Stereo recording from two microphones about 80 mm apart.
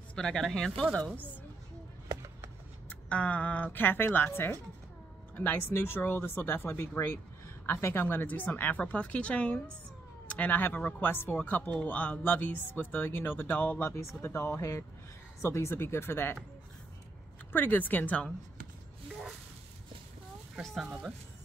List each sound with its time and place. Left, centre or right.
0.1 s speech: centre
2.9 s speech: centre
17.5 s speech: left
20.6 s speech: centre